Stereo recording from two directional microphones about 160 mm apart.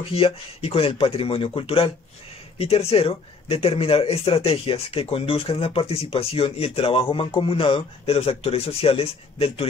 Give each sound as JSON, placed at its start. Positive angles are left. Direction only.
{"t": 0.0, "sound": "speech", "side_deg": 35}